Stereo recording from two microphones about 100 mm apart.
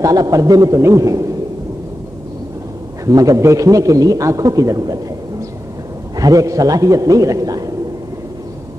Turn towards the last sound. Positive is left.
turn(degrees=-35)  # may be behind; listen again after turning